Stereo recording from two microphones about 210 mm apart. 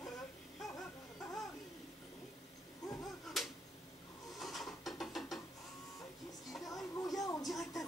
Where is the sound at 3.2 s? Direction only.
Centre (ahead or behind).